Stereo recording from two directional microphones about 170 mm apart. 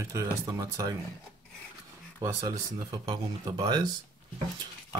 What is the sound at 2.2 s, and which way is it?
Speech, 20° right (ahead or behind).